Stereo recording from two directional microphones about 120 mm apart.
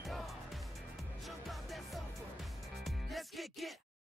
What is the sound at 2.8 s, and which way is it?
Music, centre (ahead or behind).